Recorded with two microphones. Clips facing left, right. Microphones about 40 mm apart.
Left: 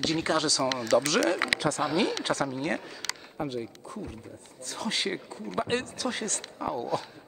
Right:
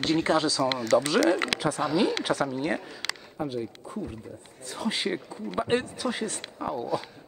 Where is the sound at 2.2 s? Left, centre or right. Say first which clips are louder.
Right 2 dB; centre.